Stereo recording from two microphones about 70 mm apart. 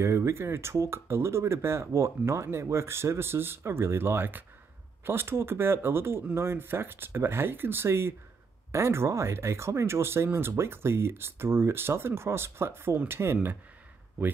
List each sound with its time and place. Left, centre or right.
0.0 s speech: right